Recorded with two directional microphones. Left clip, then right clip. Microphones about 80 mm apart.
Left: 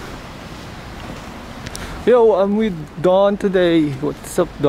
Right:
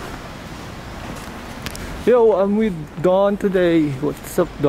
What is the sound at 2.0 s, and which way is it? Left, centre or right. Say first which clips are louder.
Speech: left 2 dB; centre.